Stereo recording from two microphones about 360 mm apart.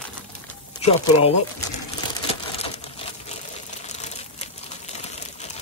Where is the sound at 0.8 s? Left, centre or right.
Centre.